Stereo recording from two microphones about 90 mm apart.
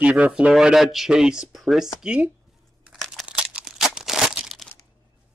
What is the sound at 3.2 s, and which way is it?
Crumpling, 10° right (ahead or behind).